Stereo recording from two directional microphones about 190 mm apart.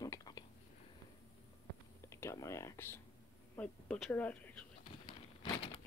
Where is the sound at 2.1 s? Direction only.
15° left (ahead or behind).